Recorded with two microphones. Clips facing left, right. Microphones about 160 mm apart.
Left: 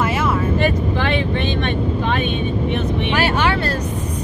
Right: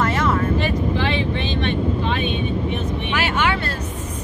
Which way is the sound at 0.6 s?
55° left (ahead or behind).